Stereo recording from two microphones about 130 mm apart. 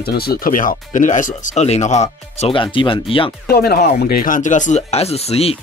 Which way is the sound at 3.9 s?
90° left.